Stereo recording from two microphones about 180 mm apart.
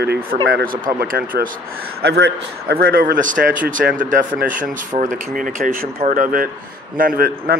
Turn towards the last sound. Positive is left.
turn(degrees=-55)  # may be behind; listen again after turning